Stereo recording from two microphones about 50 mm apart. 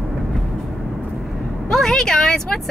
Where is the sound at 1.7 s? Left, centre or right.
Centre.